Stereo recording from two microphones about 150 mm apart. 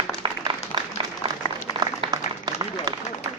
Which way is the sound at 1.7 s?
25° right (ahead or behind).